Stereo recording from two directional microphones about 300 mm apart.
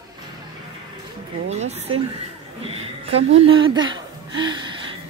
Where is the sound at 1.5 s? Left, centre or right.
Right.